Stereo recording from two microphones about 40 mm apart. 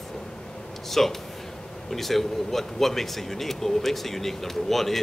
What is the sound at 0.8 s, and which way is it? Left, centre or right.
A man's voice, centre.